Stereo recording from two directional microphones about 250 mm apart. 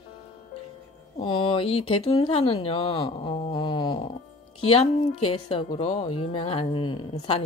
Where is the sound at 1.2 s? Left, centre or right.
Centre.